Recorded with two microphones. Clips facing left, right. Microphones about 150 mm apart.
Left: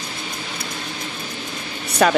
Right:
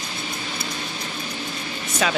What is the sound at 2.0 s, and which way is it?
Speech, 55° left (ahead or behind).